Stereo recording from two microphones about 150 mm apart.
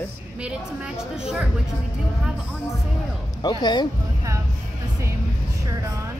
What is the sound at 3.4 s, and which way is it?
Speech, 30° left (ahead or behind).